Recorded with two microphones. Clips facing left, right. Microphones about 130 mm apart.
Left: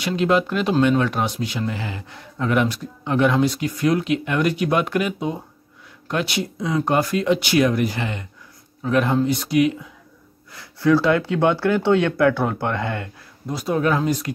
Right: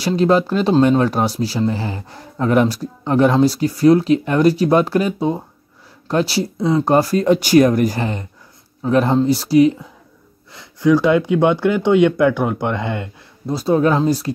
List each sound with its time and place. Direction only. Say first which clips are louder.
0.0 s speech: right 4 dB; 35° right (ahead or behind)
10.5 s speech: right 3 dB; 20° right (ahead or behind)
13.5 s speech: right 5 dB; 30° right (ahead or behind)